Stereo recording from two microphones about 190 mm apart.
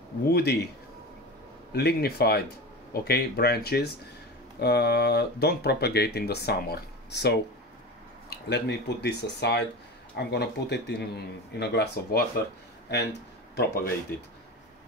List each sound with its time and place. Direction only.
0.3 s speech: 60° left (ahead or behind)
1.7 s speech: 60° left (ahead or behind)